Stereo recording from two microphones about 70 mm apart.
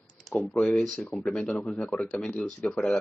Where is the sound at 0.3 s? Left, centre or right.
Left.